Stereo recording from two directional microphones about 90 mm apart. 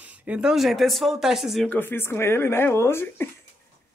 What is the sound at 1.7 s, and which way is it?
A woman's voice, 20° left (ahead or behind).